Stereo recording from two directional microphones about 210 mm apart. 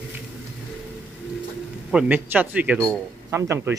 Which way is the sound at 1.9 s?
5° right (ahead or behind).